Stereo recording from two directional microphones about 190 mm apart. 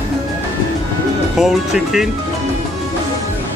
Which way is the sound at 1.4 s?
Centre (ahead or behind).